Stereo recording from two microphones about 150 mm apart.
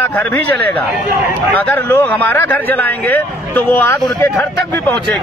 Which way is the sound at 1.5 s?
10° left (ahead or behind).